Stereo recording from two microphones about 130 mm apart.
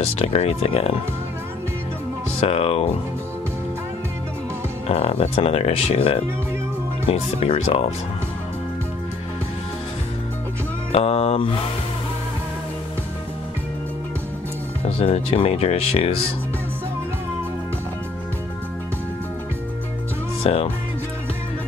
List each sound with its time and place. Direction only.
0.0 s speech: 50° left (ahead or behind)
2.4 s speech: 50° left (ahead or behind)
4.8 s speech: 50° left (ahead or behind)
10.9 s speech: 50° left (ahead or behind)
14.9 s speech: 50° left (ahead or behind)
20.4 s speech: 50° left (ahead or behind)